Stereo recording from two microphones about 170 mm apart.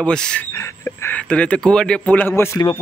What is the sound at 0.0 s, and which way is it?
Speech, 5° left (ahead or behind).